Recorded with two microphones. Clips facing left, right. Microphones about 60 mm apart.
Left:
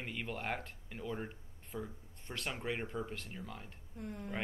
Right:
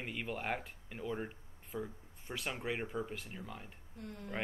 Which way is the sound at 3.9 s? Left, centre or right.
Centre.